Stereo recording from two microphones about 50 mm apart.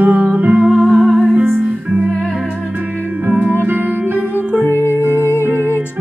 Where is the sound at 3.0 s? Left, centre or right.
Right.